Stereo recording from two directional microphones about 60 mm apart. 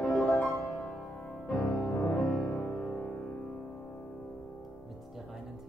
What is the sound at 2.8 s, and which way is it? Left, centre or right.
Music, centre.